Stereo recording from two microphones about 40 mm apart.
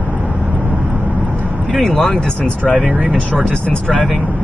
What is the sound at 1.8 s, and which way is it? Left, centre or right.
Speech, centre.